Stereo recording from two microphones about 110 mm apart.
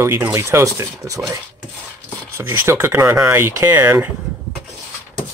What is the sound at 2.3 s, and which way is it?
Speech, 25° right (ahead or behind).